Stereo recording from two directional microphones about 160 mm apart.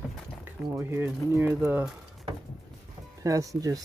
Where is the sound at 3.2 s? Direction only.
20° right (ahead or behind).